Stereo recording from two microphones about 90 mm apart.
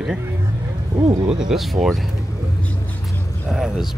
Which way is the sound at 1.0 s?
55° right (ahead or behind).